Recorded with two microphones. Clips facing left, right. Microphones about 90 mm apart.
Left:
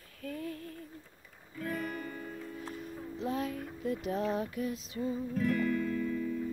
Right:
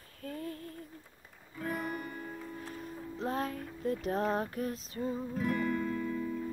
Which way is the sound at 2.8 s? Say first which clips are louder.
Right 2 dB; 40° right (ahead or behind).